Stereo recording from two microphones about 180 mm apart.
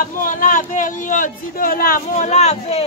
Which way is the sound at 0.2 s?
45° left (ahead or behind).